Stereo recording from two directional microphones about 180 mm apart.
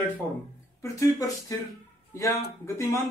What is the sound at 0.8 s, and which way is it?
Speech, 20° left (ahead or behind).